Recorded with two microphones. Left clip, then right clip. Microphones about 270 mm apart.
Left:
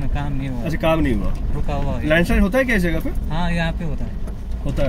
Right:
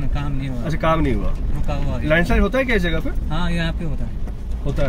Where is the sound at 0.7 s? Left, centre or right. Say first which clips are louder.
Even; centre.